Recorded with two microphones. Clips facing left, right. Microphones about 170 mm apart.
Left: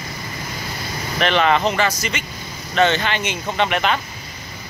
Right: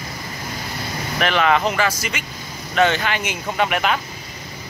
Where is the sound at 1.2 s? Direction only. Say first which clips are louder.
Left 1 dB; 5° right (ahead or behind).